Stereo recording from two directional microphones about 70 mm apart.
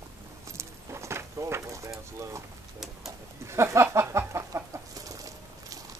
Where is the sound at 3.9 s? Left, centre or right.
Right.